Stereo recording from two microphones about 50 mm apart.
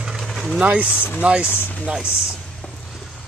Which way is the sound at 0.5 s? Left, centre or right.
Right.